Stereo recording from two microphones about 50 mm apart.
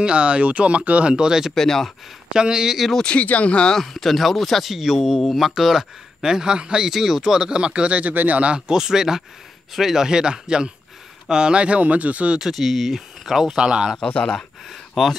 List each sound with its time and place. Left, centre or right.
0.0 s speech: right
1.5 s speech: centre
2.2 s speech: centre
3.1 s speech: left
3.7 s speech: centre; by 8.1 s right
8.1 s speech: right
8.4 s speech: centre
12.4 s speech: centre
13.6 s speech: centre
13.9 s speech: left
14.7 s speech: centre